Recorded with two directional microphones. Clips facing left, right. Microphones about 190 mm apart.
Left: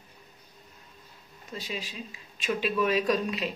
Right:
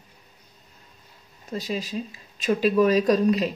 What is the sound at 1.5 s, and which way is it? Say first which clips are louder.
Speech: right 8 dB; 40° right (ahead or behind).